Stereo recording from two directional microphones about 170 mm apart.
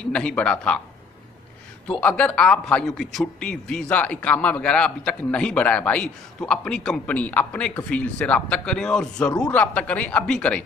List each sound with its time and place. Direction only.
0.1 s speech: 5° left (ahead or behind)
2.0 s a man's voice: 5° left (ahead or behind)